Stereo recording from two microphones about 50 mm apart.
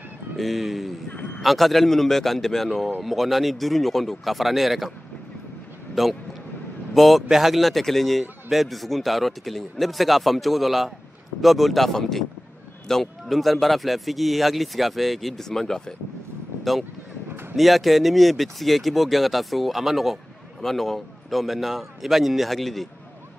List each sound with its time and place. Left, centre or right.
0.4 s a man's voice: centre
1.1 s a sound: left
1.4 s a man's voice: centre
6.0 s a man's voice: centre
17.6 s a man's voice: centre